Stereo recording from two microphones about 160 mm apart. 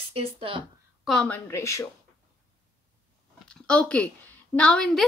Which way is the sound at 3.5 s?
5° left (ahead or behind).